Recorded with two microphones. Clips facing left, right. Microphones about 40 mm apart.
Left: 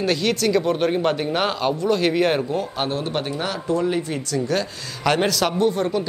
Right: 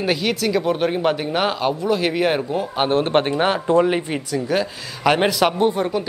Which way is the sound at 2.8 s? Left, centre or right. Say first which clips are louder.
Right 7 dB; right.